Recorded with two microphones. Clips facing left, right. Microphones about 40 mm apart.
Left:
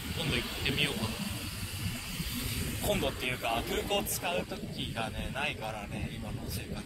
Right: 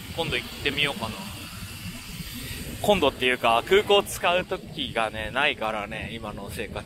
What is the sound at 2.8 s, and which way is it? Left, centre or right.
Speech, right.